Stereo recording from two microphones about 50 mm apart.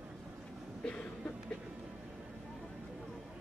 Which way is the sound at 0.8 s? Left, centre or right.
Left.